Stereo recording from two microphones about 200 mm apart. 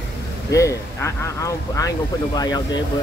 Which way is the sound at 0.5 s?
15° left (ahead or behind).